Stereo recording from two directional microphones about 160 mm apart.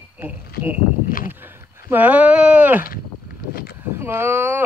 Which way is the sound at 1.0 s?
60° left (ahead or behind).